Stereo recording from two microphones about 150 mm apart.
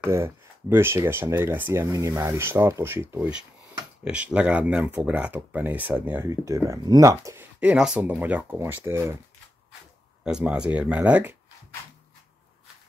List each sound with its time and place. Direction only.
0.0 s speech: 15° right (ahead or behind)
7.6 s speech: 5° right (ahead or behind)
10.2 s speech: 5° right (ahead or behind)